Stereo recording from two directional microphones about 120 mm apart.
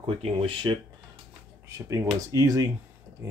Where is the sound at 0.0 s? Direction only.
45° right (ahead or behind).